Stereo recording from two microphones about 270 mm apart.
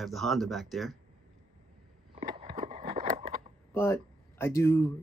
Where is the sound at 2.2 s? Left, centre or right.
Right.